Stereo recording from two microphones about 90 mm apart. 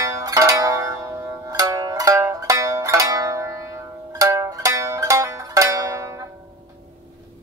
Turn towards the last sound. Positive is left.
turn(degrees=-30)  # may be behind; listen again after turning